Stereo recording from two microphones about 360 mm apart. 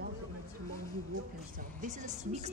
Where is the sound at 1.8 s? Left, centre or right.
Centre.